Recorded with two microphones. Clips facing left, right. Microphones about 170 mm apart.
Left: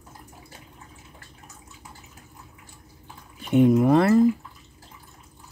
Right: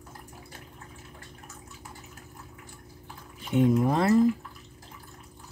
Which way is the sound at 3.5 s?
65° left (ahead or behind).